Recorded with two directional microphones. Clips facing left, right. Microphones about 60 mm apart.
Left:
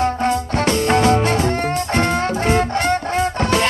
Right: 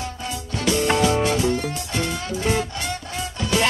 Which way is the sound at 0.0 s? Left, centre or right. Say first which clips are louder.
Left 13 dB; left.